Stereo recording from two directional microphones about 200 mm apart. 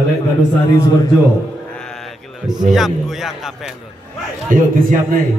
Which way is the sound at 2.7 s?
Centre (ahead or behind).